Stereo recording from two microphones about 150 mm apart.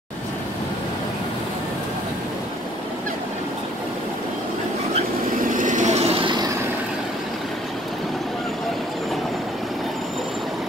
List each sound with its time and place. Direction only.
5.4 s vehicle: 60° right (ahead or behind); by 6.3 s 40° right (ahead or behind)